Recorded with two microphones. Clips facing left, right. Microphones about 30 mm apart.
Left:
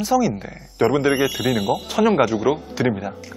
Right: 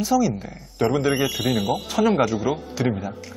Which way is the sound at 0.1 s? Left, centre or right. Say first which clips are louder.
Left 2 dB; left.